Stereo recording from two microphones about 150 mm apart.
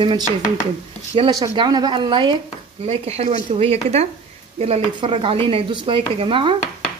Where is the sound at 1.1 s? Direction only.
30° right (ahead or behind).